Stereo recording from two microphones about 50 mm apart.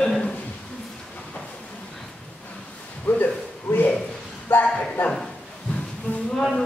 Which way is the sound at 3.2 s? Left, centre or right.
Left.